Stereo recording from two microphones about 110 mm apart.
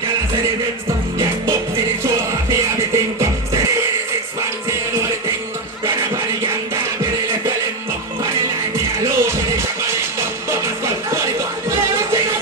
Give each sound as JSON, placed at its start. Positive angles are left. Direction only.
{"t": 8.7, "sound": "music", "side_deg": -25}